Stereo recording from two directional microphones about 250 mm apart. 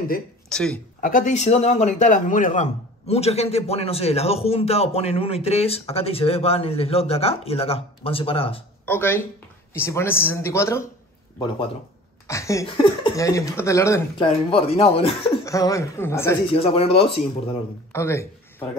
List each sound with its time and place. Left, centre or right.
0.5 s speech: centre
1.0 s a man's voice: left
8.8 s speech: centre
12.3 s speech: centre
15.4 s speech: centre
16.4 s a man's voice: left
17.9 s speech: centre